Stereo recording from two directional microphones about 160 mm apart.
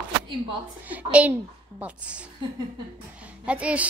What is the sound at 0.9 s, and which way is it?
A woman's voice, 10° right (ahead or behind).